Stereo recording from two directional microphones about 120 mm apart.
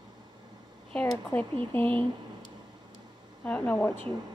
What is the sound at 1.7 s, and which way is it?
Speech, 15° left (ahead or behind).